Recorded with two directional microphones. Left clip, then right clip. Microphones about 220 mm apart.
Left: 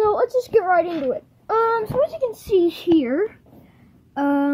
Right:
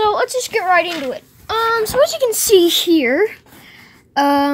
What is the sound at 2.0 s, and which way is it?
A woman's voice, 25° right (ahead or behind).